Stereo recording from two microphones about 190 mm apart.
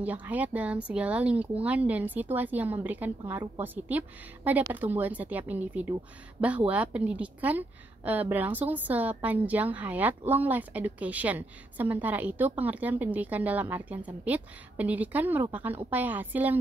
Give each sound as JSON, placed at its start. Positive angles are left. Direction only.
{"t": 0.0, "sound": "a woman's voice", "side_deg": -10}